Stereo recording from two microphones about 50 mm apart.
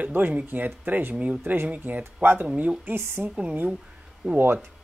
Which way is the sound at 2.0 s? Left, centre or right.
Right.